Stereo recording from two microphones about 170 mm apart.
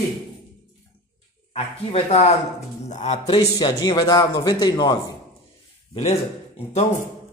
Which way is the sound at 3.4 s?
25° left (ahead or behind).